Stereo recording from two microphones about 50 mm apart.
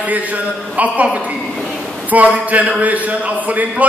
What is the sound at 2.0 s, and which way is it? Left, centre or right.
A man's voice, right.